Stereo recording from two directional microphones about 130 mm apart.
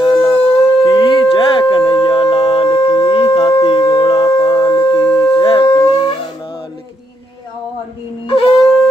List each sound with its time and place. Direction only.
0.0 s howl: 40° left (ahead or behind)
0.8 s a sound: 35° left (ahead or behind)
8.3 s shofar: 45° left (ahead or behind)